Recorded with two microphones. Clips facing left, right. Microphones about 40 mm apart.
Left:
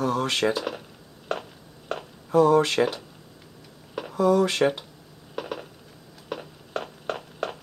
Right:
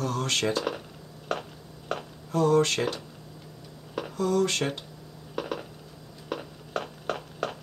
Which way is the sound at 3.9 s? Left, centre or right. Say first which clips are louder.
Left 5 dB; centre.